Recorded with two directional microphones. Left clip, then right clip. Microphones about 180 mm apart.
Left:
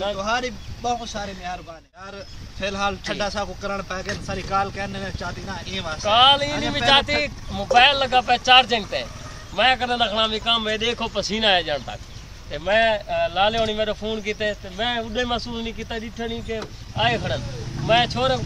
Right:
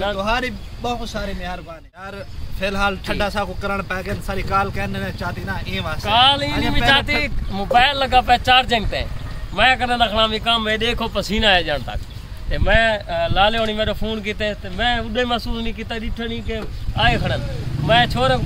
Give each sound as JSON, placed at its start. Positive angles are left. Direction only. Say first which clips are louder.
{"t": 0.2, "sound": "speech", "louder": "right 3 dB", "side_deg": -5}
{"t": 2.1, "sound": "speech", "louder": "right 3 dB", "side_deg": 0}
{"t": 6.0, "sound": "speech", "louder": "even", "side_deg": 50}
{"t": 6.6, "sound": "speech", "louder": "right 1 dB", "side_deg": 35}
{"t": 7.7, "sound": "speech", "louder": "right 1 dB", "side_deg": 10}